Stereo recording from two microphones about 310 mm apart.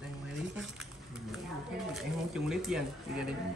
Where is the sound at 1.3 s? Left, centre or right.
Centre.